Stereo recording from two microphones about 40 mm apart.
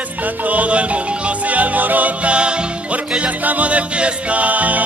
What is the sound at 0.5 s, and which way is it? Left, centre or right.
Music, right.